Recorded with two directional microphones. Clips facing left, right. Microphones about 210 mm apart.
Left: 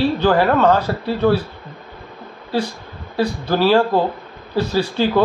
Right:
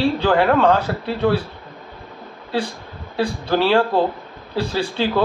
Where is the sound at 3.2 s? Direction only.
5° left (ahead or behind).